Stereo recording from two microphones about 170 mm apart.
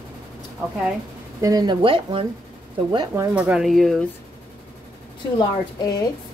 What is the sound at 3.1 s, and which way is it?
Speech, 15° right (ahead or behind).